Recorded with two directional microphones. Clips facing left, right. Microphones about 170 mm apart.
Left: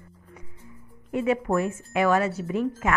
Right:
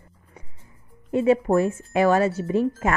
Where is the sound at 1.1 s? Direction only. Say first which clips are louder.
Right 5 dB; 30° right (ahead or behind).